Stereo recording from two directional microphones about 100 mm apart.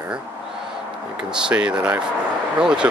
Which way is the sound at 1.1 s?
10° right (ahead or behind).